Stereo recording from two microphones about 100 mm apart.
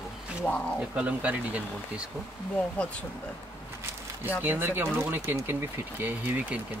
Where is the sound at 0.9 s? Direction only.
15° right (ahead or behind).